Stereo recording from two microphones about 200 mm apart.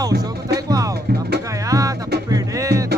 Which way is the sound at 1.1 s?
55° right (ahead or behind).